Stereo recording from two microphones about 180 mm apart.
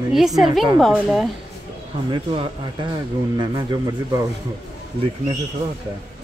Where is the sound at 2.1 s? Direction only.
30° right (ahead or behind).